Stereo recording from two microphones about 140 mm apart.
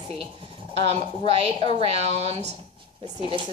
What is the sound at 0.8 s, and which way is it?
Speech, 45° right (ahead or behind).